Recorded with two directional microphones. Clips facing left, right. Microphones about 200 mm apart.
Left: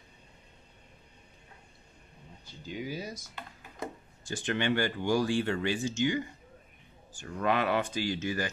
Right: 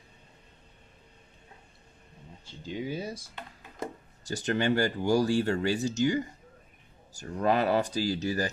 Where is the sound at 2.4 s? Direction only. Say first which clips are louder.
Right 3 dB; 25° right (ahead or behind).